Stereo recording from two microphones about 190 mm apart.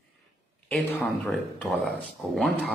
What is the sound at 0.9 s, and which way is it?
Speech, 10° left (ahead or behind).